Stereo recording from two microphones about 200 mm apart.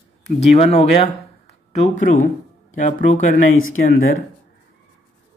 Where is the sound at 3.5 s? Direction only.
85° left.